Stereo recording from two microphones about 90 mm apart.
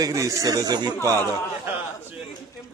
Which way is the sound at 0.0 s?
35° right (ahead or behind).